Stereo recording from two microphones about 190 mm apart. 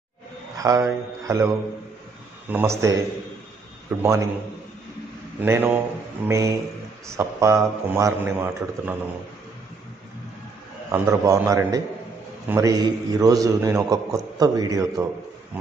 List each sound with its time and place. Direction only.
0.6 s speech: 15° right (ahead or behind)
2.5 s a man's voice: 15° right (ahead or behind)
4.0 s a man's voice: 15° right (ahead or behind)
5.4 s a man's voice: 10° right (ahead or behind)
10.9 s a man's voice: 15° right (ahead or behind)
15.5 s a sound: 10° right (ahead or behind)